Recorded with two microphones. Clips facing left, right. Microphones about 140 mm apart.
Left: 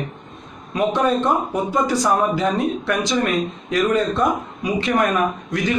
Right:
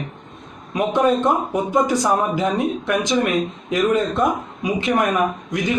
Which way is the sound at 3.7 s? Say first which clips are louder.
Even; 20° right (ahead or behind).